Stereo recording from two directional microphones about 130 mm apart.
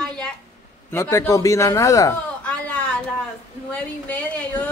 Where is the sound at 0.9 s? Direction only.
20° left (ahead or behind).